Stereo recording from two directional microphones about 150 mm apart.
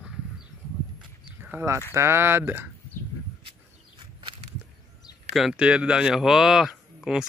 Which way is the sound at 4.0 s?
30° right (ahead or behind).